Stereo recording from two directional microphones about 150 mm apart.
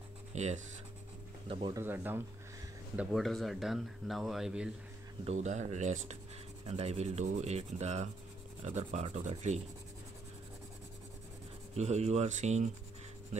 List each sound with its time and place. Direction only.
0.3 s speech: 50° right (ahead or behind)
1.7 s speech: 15° right (ahead or behind)
3.0 s speech: centre (ahead or behind)
5.2 s rub: 50° right (ahead or behind)
11.7 s rub: 45° right (ahead or behind)